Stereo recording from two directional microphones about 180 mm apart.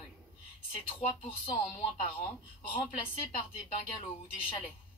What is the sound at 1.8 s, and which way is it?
Speech, 30° left (ahead or behind).